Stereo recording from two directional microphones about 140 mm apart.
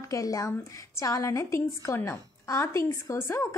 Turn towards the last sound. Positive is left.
turn(degrees=20)  # may be behind; listen again after turning